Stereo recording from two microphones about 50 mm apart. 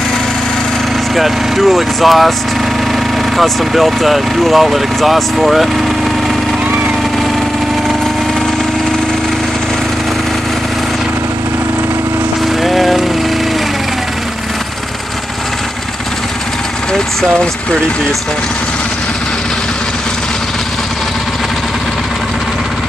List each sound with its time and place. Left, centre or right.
1.1 s speech: centre
3.3 s speech: centre
12.6 s lawn mower: centre